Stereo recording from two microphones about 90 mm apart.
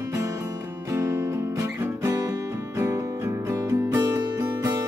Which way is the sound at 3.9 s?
40° right (ahead or behind).